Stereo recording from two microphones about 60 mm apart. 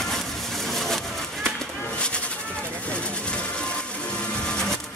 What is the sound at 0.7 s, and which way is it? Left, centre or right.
Pigeon, centre.